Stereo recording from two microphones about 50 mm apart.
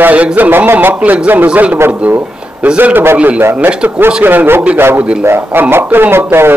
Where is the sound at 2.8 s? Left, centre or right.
Right.